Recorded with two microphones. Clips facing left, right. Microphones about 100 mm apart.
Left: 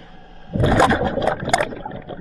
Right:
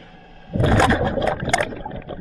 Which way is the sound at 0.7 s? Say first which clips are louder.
Left 2 dB; 15° left (ahead or behind).